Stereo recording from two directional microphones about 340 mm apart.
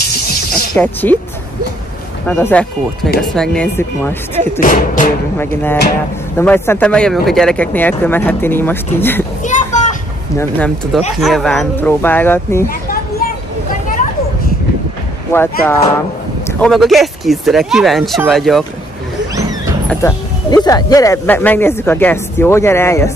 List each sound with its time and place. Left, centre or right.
0.8 s speech: centre
2.2 s speech: centre
4.6 s music: left
6.3 s speech: centre
9.4 s children playing: left
10.3 s speech: centre
12.6 s a sound: left
15.3 s speech: centre
19.9 s speech: centre